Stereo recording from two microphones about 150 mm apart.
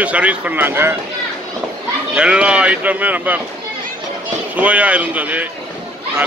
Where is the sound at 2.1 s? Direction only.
5° right (ahead or behind).